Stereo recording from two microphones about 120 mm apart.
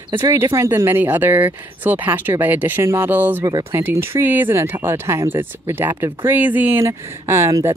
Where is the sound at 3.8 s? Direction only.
20° right (ahead or behind).